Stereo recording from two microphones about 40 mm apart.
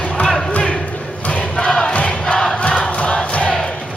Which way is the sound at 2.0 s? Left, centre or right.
Left.